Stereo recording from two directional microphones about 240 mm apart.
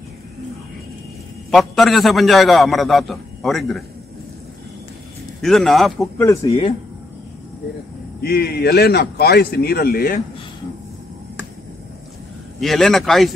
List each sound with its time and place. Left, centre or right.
1.5 s a man's voice: centre
5.4 s a man's voice: centre
6.2 s speech: centre
8.2 s a man's voice: left
12.5 s a man's voice: centre